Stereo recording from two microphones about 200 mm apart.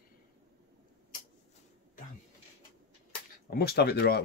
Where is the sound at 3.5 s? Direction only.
50° left (ahead or behind).